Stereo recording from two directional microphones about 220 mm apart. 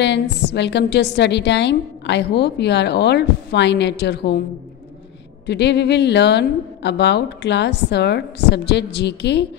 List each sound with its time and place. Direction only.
0.0 s a woman's voice: 50° left (ahead or behind)
5.5 s a woman's voice: 50° left (ahead or behind)